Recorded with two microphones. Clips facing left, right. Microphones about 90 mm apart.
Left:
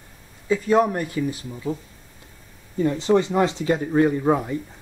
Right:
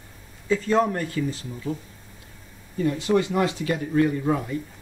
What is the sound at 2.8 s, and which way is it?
Speech, 30° left (ahead or behind).